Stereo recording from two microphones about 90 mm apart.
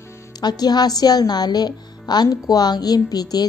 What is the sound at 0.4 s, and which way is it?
A woman's voice, 50° left (ahead or behind).